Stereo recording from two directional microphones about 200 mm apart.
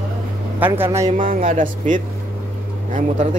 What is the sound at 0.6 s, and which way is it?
Speech, 10° right (ahead or behind).